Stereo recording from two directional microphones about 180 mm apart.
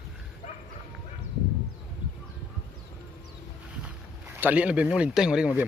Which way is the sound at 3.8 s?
10° right (ahead or behind).